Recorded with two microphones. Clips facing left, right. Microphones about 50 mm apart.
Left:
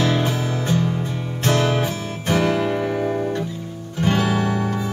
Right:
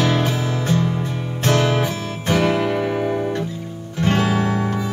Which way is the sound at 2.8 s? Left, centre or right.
Centre.